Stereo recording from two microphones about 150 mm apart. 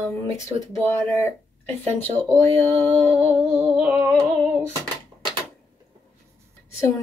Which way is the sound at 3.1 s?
Centre (ahead or behind).